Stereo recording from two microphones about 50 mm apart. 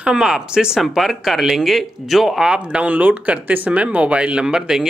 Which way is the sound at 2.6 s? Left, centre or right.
Right.